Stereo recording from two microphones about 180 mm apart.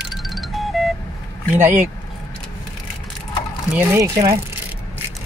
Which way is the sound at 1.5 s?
10° right (ahead or behind).